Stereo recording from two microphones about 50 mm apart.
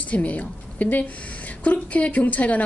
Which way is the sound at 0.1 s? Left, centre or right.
Left.